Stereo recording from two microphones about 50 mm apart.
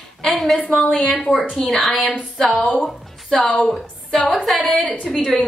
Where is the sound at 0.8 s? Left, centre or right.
Left.